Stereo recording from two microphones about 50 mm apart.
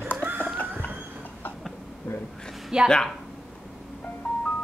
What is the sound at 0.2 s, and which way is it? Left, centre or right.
Chicken, right.